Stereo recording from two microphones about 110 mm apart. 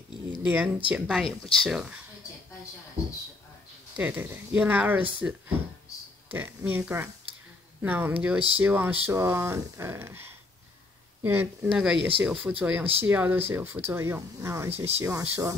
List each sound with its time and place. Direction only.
0.4 s speech: 10° right (ahead or behind)
1.2 s speech: 5° left (ahead or behind)
1.7 s speech: 5° right (ahead or behind)
3.9 s speech: 15° right (ahead or behind)
6.3 s speech: 20° right (ahead or behind)
11.7 s speech: 5° right (ahead or behind); by 15.5 s 25° right (ahead or behind)